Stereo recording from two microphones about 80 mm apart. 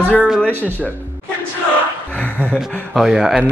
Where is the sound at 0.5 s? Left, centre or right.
Right.